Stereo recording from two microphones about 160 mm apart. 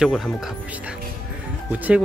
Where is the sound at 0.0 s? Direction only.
Centre (ahead or behind).